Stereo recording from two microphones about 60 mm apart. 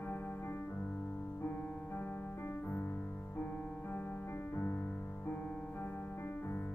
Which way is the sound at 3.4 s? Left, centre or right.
Left.